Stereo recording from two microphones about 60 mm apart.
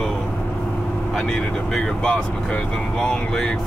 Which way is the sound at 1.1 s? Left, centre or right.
Centre.